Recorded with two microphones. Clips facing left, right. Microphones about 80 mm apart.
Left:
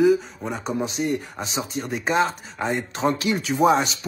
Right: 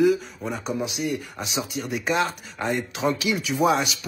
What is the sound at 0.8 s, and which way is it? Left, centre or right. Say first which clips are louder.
Speech: left 3 dB; left.